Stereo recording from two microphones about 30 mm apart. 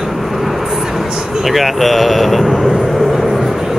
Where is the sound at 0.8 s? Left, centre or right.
Centre.